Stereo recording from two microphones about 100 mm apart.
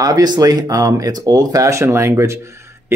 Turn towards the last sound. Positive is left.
turn(degrees=-25)  # may be behind; listen again after turning